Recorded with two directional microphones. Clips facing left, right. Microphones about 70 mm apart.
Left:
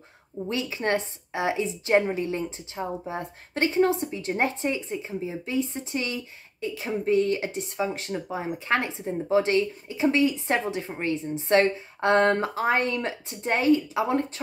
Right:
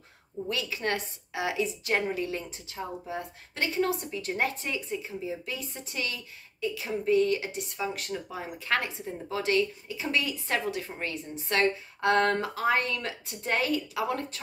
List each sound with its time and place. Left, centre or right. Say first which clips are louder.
0.5 s a woman's voice: left 5 dB; left